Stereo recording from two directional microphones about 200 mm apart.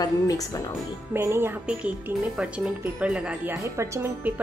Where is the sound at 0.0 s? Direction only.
20° left (ahead or behind).